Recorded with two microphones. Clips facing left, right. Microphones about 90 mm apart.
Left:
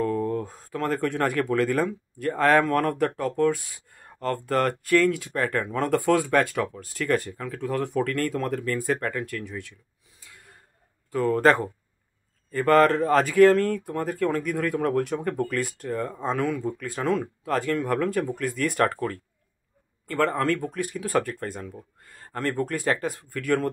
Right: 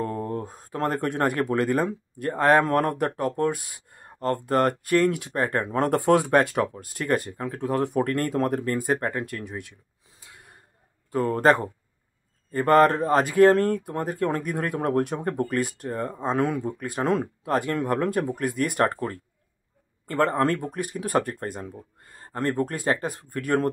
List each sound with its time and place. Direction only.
0.0 s speech: 30° right (ahead or behind)
11.1 s speech: 30° right (ahead or behind)
21.0 s speech: 20° right (ahead or behind)